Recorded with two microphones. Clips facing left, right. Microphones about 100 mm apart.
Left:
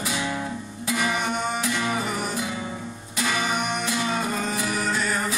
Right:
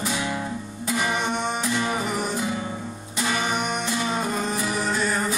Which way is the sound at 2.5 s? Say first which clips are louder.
Right 2 dB; 15° right (ahead or behind).